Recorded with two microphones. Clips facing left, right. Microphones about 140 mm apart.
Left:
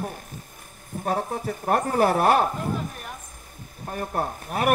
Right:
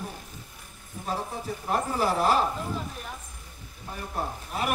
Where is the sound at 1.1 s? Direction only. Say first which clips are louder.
Left 5 dB; 60° left (ahead or behind).